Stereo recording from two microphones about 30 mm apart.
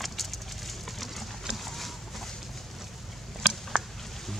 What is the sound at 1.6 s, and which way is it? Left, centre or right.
Chicken, centre.